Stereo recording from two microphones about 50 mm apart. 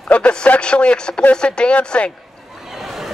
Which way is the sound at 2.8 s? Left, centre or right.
Centre.